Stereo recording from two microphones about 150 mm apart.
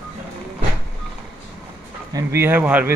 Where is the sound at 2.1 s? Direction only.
20° right (ahead or behind).